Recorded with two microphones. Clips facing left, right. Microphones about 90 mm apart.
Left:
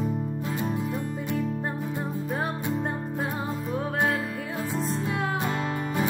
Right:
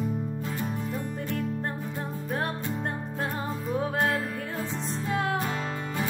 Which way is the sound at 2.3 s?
Centre (ahead or behind).